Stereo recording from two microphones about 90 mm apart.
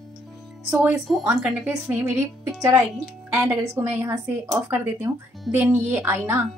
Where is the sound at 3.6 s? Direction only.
30° right (ahead or behind).